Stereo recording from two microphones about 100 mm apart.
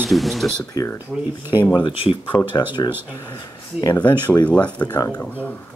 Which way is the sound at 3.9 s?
20° left (ahead or behind).